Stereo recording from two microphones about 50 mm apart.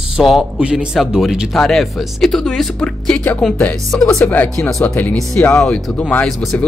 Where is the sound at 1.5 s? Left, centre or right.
Centre.